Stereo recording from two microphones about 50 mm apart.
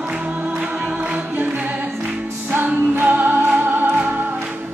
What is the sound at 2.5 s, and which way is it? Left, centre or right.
Music, right.